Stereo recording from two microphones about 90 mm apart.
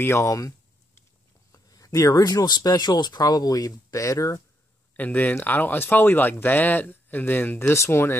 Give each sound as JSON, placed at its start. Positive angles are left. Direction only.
{"t": 0.0, "sound": "speech", "side_deg": 30}
{"t": 4.9, "sound": "speech", "side_deg": 20}